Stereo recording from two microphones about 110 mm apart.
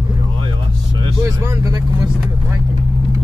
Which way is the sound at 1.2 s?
30° right (ahead or behind).